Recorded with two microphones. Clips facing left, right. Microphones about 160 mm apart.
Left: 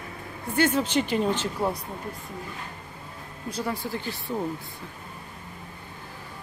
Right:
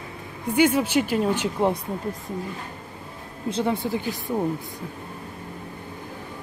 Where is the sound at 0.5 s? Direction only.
10° right (ahead or behind).